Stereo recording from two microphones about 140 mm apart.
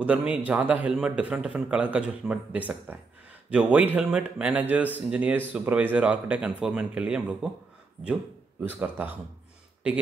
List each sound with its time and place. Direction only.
0.0 s a man's voice: 10° right (ahead or behind)
8.0 s speech: 40° right (ahead or behind)
8.6 s a man's voice: 10° right (ahead or behind)